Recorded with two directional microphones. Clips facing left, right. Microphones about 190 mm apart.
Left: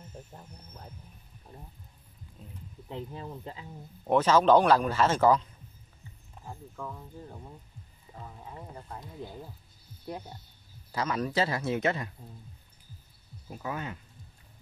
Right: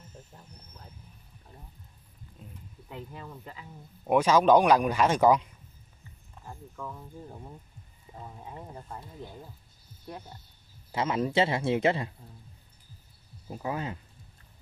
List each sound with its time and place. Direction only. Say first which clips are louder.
2.4 s a sound: even; centre (ahead or behind)
2.9 s speech: left 3 dB; 30° left (ahead or behind)
4.1 s speech: right 1 dB; 10° right (ahead or behind)
6.4 s speech: even; 5° left (ahead or behind); by 8.9 s 10° right (ahead or behind)
10.9 s speech: right 2 dB; 25° right (ahead or behind)
13.5 s speech: right 3 dB; 30° right (ahead or behind)